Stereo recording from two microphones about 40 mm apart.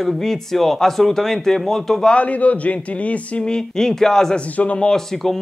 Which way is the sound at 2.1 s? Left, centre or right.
Left.